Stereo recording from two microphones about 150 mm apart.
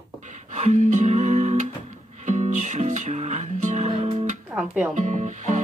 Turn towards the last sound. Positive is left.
turn(degrees=-55)  # may be behind; listen again after turning